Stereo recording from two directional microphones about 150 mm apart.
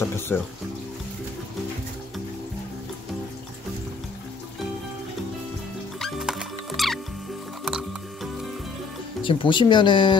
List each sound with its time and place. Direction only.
0.0 s music: 15° left (ahead or behind)
5.9 s music: centre (ahead or behind)
9.2 s speech: 35° left (ahead or behind)